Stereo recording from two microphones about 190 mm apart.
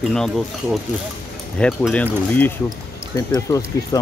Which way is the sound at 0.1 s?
Centre (ahead or behind).